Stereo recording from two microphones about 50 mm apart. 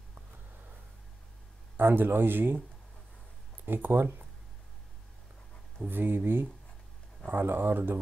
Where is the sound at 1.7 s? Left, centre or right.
Right.